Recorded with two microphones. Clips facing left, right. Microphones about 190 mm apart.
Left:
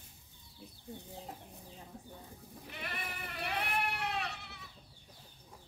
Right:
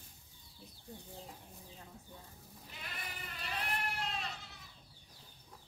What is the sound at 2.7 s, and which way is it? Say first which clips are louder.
Goat: left 6 dB; 65° left (ahead or behind).